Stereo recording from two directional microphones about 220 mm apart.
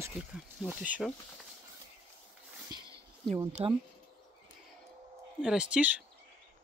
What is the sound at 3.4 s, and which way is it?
Speech, 15° right (ahead or behind).